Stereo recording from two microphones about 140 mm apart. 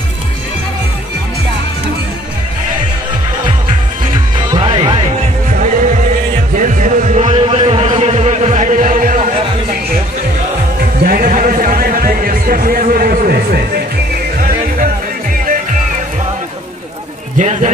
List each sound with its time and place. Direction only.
4.6 s music: 40° right (ahead or behind)
5.6 s heart murmur: 65° right (ahead or behind)
6.5 s music: 65° right (ahead or behind)
7.3 s music: 40° right (ahead or behind); by 9.2 s 70° right (ahead or behind)
10.8 s a sound: 90° right
17.4 s a sound: 60° right (ahead or behind)